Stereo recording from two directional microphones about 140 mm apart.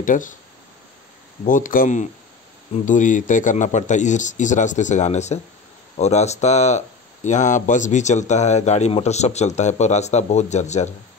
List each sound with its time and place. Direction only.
0.0 s speech: 70° left (ahead or behind)
1.4 s a man's voice: 65° left (ahead or behind)